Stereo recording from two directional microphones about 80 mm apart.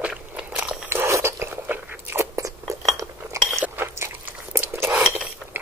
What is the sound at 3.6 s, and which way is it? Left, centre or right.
Biting, right.